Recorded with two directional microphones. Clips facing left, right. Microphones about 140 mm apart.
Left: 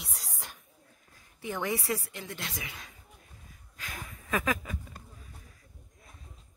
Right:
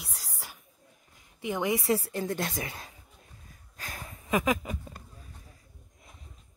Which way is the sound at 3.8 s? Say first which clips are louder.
Right 1 dB; 40° right (ahead or behind).